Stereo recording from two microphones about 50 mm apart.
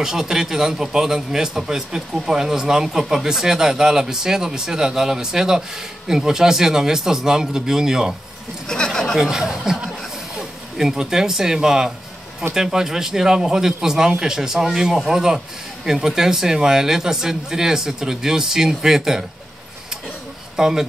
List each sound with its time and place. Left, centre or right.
0.0 s a man's voice: centre
8.6 s a sound: centre
9.2 s a man's voice: centre
20.5 s speech: centre